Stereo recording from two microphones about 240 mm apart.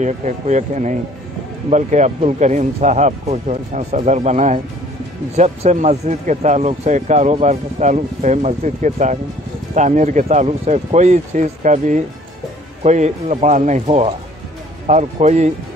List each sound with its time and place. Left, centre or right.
0.0 s speech: right